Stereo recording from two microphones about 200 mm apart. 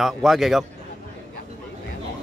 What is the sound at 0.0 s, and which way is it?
Speech, centre (ahead or behind).